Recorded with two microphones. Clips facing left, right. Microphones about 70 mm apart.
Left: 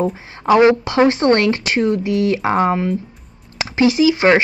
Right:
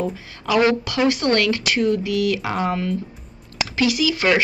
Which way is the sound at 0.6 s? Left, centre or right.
Left.